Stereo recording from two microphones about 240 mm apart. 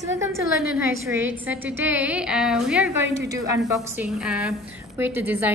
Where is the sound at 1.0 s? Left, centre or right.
Centre.